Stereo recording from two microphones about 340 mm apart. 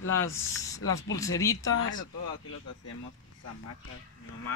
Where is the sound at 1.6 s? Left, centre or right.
Left.